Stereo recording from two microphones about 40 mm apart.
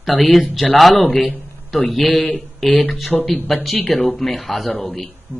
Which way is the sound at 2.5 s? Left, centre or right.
Centre.